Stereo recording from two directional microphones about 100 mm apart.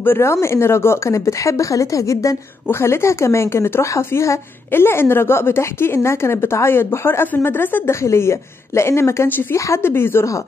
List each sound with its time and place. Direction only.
0.0 s speech: 25° left (ahead or behind)